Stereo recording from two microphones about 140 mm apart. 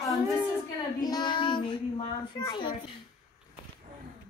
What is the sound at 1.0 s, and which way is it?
Child singing, 30° left (ahead or behind).